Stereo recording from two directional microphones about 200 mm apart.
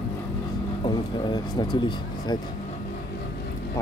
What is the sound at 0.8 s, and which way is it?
Speech, 20° left (ahead or behind).